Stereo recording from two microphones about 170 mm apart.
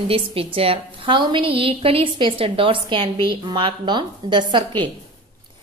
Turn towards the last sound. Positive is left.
turn(degrees=-25)  # may be behind; listen again after turning